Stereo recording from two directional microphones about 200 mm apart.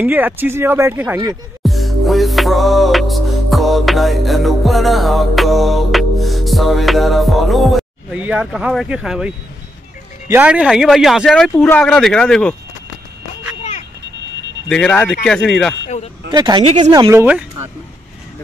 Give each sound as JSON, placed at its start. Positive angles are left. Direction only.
{"t": 0.0, "sound": "speech", "side_deg": -10}
{"t": 1.6, "sound": "music", "side_deg": 0}
{"t": 14.7, "sound": "speech", "side_deg": 5}
{"t": 15.2, "sound": "music", "side_deg": 0}
{"t": 16.3, "sound": "speech", "side_deg": -20}